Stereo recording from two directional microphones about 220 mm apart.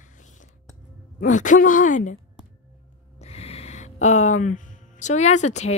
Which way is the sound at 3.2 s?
30° left (ahead or behind).